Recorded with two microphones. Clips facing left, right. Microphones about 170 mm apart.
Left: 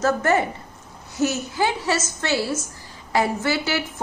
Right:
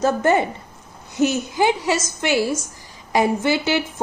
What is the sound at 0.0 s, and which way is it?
A woman's voice, 20° right (ahead or behind).